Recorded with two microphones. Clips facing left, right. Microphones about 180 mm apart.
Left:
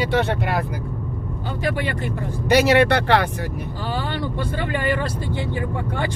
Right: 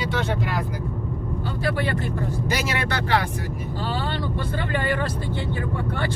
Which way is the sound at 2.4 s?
65° left (ahead or behind).